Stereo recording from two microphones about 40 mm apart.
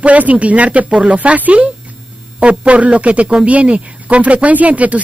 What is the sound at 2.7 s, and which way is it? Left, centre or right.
Speech, right.